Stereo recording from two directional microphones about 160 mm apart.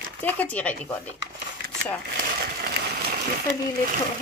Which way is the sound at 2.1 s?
75° right (ahead or behind).